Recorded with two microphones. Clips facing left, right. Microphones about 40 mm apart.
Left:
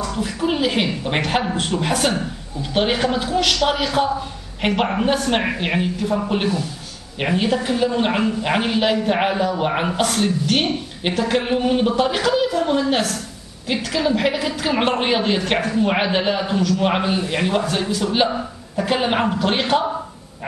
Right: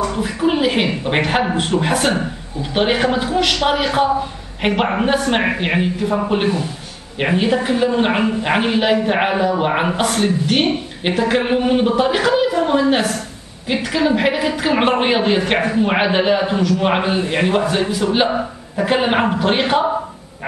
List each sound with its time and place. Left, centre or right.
0.0 s a woman's voice: centre